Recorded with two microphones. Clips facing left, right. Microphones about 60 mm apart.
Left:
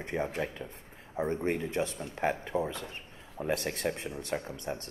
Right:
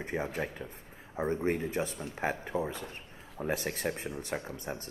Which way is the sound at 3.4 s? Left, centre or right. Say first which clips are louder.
Left 1 dB; centre.